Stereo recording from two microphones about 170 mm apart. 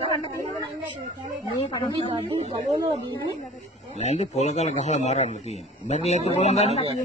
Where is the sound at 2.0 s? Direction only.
40° right (ahead or behind).